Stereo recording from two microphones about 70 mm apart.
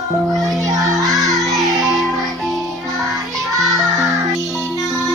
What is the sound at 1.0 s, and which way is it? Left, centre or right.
Music, centre.